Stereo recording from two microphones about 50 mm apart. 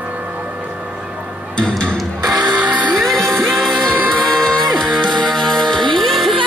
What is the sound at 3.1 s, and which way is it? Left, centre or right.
Music, centre.